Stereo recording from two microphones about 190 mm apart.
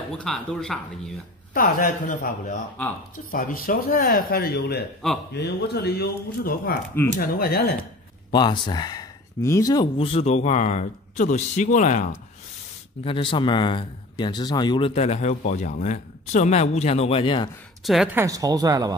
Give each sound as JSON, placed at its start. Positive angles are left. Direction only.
{"t": 0.2, "sound": "speech", "side_deg": 0}
{"t": 1.5, "sound": "speech", "side_deg": 45}
{"t": 8.3, "sound": "speech", "side_deg": 25}
{"t": 9.9, "sound": "speech", "side_deg": 30}
{"t": 13.0, "sound": "speech", "side_deg": 25}
{"t": 17.8, "sound": "speech", "side_deg": 0}
{"t": 18.1, "sound": "speech", "side_deg": -15}